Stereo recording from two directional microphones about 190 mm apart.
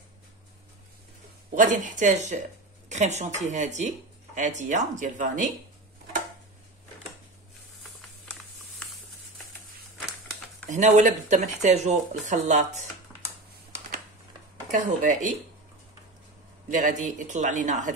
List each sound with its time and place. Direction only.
1.5 s speech: 40° right (ahead or behind)
7.8 s a sound: 5° left (ahead or behind)
10.7 s speech: 40° right (ahead or behind)
14.7 s speech: 40° right (ahead or behind)
16.6 s speech: 40° right (ahead or behind)